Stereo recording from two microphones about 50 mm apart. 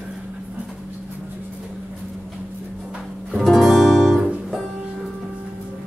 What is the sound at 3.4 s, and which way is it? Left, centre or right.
Guitar, centre.